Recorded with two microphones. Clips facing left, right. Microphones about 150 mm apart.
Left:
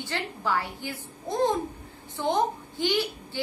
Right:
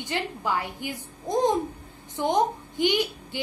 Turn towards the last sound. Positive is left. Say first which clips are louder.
# right 1 dB
turn(degrees=-15)  # may be behind; listen again after turning